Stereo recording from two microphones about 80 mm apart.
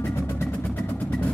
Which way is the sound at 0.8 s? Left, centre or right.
Centre.